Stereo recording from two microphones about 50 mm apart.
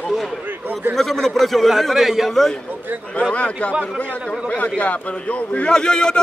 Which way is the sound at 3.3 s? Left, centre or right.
Left.